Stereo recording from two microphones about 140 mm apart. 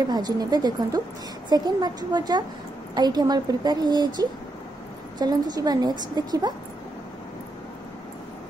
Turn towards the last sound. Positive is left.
turn(degrees=-30)  # may be behind; listen again after turning